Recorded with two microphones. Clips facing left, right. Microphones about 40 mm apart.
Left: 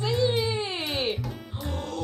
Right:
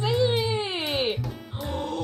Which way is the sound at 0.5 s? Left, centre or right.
Centre.